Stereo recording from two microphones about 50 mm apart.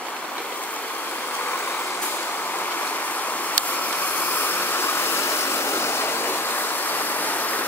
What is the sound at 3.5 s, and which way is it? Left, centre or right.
Vehicle, left.